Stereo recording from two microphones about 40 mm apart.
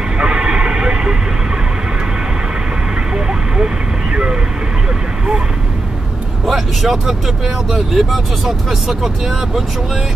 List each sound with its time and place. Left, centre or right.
0.2 s vehicle: right
3.3 s vehicle: right
6.4 s speech: centre